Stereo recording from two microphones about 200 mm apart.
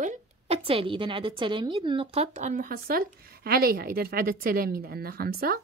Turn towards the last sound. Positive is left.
turn(degrees=-50)  # may be behind; listen again after turning